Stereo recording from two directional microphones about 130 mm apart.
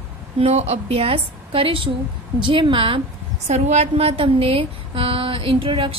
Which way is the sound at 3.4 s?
60° right (ahead or behind).